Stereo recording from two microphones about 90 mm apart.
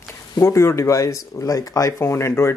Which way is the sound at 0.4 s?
30° left (ahead or behind).